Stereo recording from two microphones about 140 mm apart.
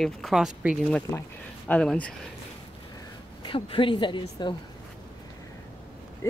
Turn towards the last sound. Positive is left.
turn(degrees=35)  # may be behind; listen again after turning